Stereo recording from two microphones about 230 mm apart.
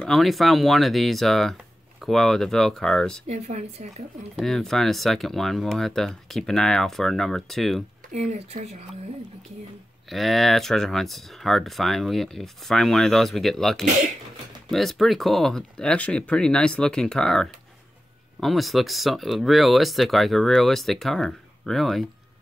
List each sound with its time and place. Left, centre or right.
0.0 s speech: centre
3.3 s a woman's voice: right
4.4 s speech: centre
8.1 s a woman's voice: right
10.0 s speech: centre
13.8 s speech: right
14.7 s speech: centre